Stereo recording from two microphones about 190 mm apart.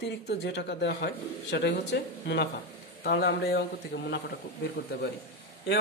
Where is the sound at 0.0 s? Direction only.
65° left (ahead or behind).